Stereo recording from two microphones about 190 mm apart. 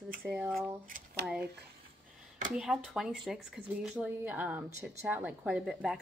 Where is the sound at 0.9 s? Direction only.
45° right (ahead or behind).